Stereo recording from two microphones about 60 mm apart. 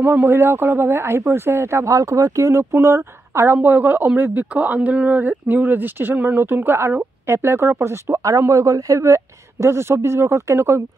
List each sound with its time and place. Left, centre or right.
0.0 s speech: right
3.5 s speech: right